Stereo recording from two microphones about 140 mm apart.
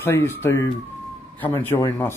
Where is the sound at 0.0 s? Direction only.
15° left (ahead or behind).